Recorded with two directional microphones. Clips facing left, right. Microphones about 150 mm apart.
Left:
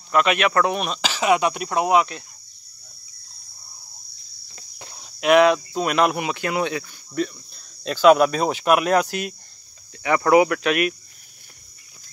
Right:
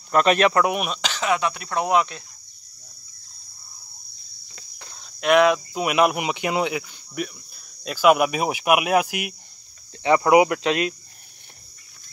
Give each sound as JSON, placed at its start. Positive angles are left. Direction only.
{"t": 0.1, "sound": "speech", "side_deg": -35}
{"t": 0.5, "sound": "speech", "side_deg": -15}
{"t": 1.1, "sound": "speech", "side_deg": 15}
{"t": 1.9, "sound": "speech", "side_deg": 5}
{"t": 4.7, "sound": "cricket", "side_deg": 15}
{"t": 5.2, "sound": "speech", "side_deg": 0}